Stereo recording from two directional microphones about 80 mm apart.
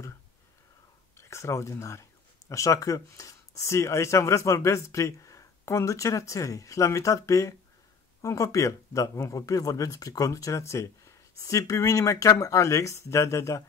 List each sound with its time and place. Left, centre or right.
1.1 s speech: left